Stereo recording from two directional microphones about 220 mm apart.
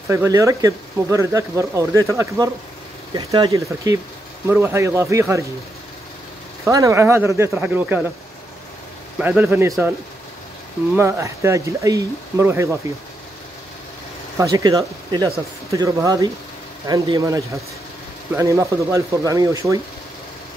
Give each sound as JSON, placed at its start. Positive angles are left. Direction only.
{"t": 0.1, "sound": "speech", "side_deg": -15}
{"t": 6.6, "sound": "speech", "side_deg": -15}
{"t": 9.2, "sound": "speech", "side_deg": -5}
{"t": 11.0, "sound": "speech", "side_deg": -10}
{"t": 14.4, "sound": "speech", "side_deg": -15}